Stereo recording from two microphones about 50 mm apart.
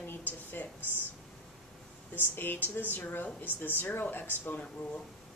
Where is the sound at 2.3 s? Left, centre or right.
Left.